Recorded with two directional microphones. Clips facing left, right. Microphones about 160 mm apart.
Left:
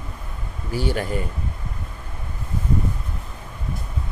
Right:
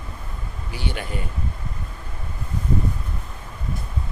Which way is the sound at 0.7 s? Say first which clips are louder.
Left 7 dB; 40° left (ahead or behind).